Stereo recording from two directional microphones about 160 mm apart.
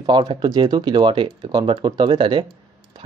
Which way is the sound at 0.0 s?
30° right (ahead or behind).